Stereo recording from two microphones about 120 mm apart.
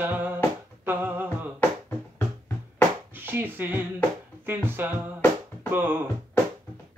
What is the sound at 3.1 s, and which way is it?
Speech, 15° right (ahead or behind).